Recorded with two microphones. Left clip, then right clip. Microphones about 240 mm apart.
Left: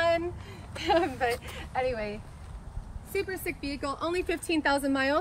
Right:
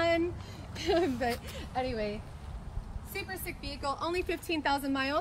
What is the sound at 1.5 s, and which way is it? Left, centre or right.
Speech, centre.